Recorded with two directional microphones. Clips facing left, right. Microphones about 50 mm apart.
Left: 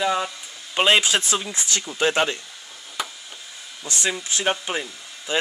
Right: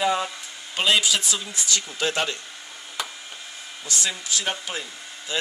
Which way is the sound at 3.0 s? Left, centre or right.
Centre.